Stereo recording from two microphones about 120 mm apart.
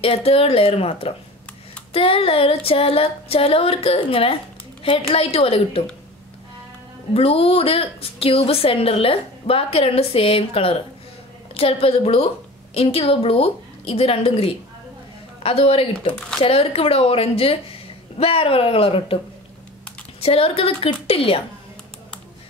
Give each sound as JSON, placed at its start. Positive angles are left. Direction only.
{"t": 0.0, "sound": "a woman's voice", "side_deg": 55}
{"t": 7.2, "sound": "a woman's voice", "side_deg": 55}
{"t": 20.2, "sound": "a woman's voice", "side_deg": 55}